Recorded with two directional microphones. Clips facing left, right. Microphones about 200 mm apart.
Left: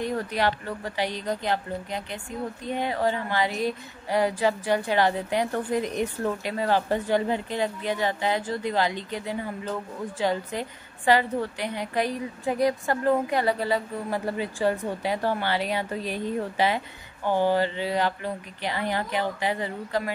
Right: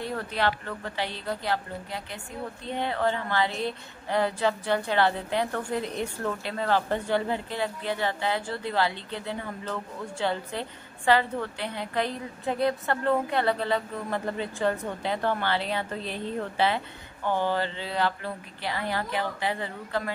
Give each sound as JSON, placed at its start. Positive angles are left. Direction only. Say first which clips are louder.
{"t": 0.0, "sound": "a woman's voice", "louder": "left 3 dB", "side_deg": 15}